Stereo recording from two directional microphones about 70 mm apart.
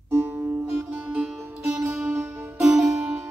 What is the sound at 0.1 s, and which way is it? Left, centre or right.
Music, right.